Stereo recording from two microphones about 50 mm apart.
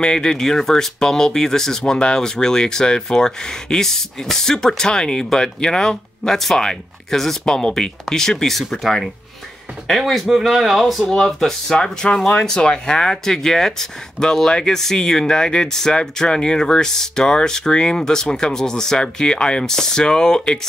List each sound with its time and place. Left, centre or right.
0.0 s speech: centre
11.7 s speech: centre